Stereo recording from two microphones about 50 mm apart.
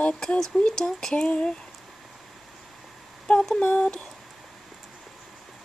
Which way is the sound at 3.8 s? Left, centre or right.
Centre.